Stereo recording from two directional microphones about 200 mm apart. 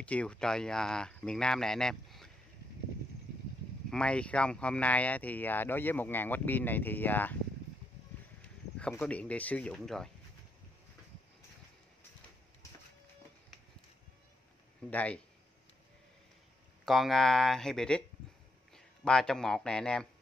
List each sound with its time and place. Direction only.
0.0 s speech: 5° left (ahead or behind)
3.9 s speech: 5° left (ahead or behind)
8.7 s speech: 5° left (ahead or behind)
14.9 s speech: 5° left (ahead or behind)
16.8 s a man's voice: centre (ahead or behind)